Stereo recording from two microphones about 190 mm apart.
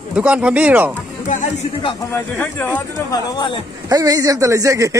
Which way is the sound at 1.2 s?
40° left (ahead or behind).